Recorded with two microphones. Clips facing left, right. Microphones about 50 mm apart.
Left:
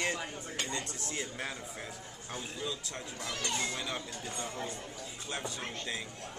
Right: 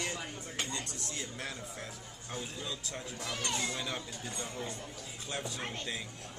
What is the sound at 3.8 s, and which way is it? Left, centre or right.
Speech, centre.